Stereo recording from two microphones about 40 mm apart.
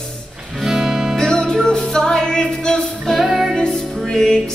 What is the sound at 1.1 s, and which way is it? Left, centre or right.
Music, centre.